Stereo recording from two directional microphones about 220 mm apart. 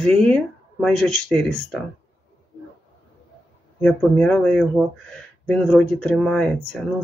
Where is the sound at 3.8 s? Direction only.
5° left (ahead or behind).